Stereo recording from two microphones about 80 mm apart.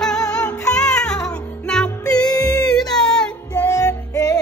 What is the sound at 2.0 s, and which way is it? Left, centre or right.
Music, left.